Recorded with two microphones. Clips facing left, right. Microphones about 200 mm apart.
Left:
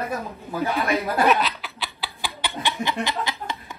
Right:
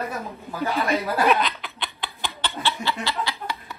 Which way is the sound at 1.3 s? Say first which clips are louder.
Even; centre (ahead or behind).